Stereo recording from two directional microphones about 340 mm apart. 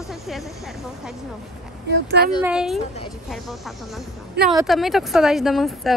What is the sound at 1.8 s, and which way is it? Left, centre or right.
Speech, right.